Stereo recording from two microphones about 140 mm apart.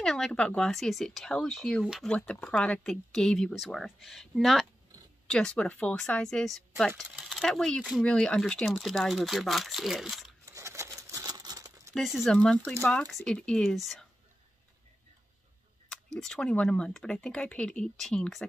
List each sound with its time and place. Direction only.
0.0 s speech: 5° left (ahead or behind)
10.4 s crumpling: 20° right (ahead or behind)
11.9 s speech: centre (ahead or behind)
15.9 s speech: 5° left (ahead or behind)